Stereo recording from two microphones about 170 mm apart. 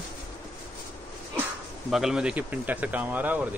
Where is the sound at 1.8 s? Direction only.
5° right (ahead or behind).